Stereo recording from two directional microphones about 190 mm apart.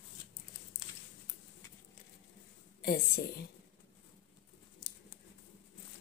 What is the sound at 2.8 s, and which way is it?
Speech, 55° left (ahead or behind).